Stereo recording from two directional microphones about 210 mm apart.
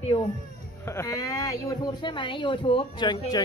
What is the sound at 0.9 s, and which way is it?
Speech, 15° left (ahead or behind).